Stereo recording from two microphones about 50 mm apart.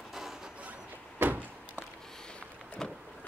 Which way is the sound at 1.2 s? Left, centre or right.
Right.